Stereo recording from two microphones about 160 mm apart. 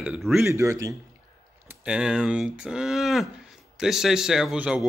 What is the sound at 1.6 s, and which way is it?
Speech, 5° right (ahead or behind).